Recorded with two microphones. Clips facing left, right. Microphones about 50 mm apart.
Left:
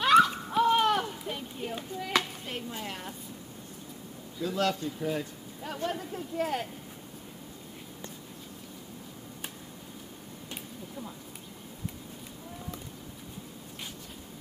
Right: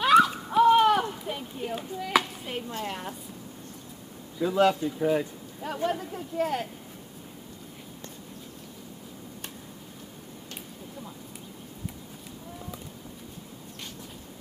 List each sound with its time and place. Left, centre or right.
0.0 s run: centre
2.8 s a sound: centre
4.4 s speech: centre
5.7 s speech: centre